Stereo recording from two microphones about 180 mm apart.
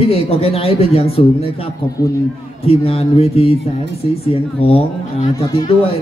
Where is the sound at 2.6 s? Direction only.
35° left (ahead or behind).